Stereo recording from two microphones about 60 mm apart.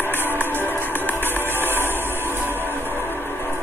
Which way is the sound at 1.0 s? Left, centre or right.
Left.